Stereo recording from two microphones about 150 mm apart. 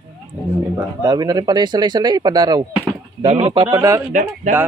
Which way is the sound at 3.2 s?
45° right (ahead or behind).